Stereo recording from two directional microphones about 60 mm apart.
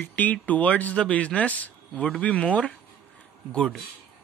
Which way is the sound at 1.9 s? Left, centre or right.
Centre.